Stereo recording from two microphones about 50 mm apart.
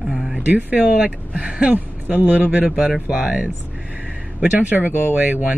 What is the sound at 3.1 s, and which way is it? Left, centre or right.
Speech, centre.